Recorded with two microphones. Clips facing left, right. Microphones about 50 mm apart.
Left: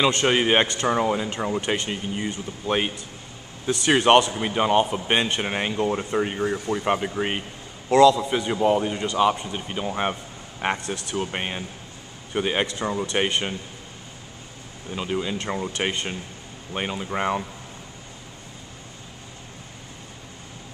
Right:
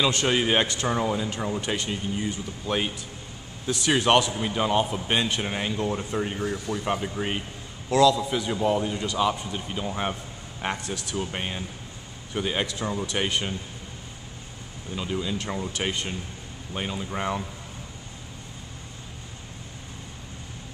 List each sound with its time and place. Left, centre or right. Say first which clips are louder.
0.1 s speech: left 3 dB; left
15.0 s speech: left 2 dB; left